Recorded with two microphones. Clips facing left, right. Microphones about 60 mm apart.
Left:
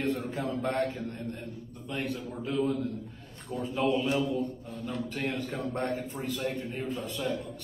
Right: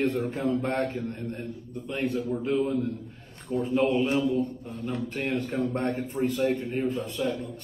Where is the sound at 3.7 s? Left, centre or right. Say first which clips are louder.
Right 3 dB; right.